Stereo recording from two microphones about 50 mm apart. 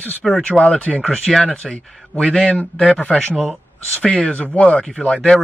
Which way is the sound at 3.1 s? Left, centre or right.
Centre.